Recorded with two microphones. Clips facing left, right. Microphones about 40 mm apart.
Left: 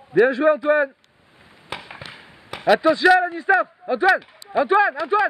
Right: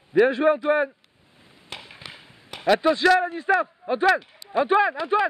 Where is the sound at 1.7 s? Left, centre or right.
Centre.